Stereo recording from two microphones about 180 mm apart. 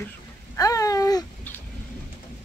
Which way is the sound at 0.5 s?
20° left (ahead or behind).